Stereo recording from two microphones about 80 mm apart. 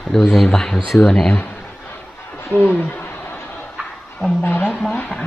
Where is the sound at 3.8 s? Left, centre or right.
Centre.